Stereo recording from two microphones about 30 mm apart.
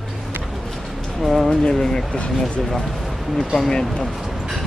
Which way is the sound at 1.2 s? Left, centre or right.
Centre.